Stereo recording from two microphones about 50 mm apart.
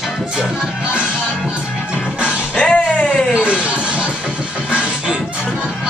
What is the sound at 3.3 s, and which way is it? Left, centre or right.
Music, right.